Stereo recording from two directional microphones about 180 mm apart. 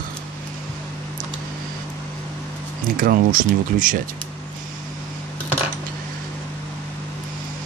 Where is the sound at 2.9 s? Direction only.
50° right (ahead or behind).